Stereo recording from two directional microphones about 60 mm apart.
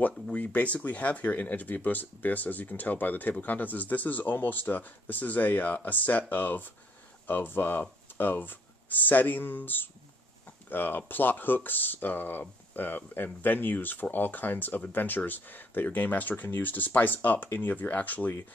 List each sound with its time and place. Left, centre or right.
0.3 s speech: left